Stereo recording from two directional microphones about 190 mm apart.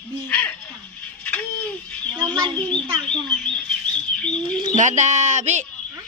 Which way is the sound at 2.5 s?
5° left (ahead or behind).